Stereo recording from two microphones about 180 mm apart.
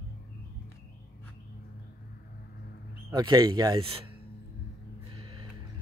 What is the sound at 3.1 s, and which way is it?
Speech, 25° right (ahead or behind).